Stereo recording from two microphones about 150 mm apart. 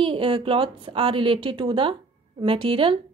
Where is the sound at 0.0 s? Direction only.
35° right (ahead or behind).